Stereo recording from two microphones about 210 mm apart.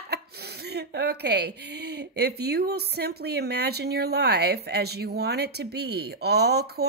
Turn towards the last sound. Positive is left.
turn(degrees=-50)  # may be behind; listen again after turning